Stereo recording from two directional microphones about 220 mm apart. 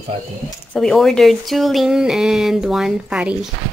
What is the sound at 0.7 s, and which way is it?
Speech, centre (ahead or behind).